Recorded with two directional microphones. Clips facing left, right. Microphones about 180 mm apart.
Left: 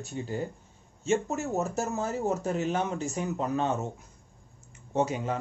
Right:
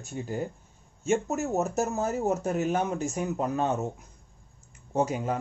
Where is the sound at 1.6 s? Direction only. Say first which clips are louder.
Right 3 dB; 20° right (ahead or behind).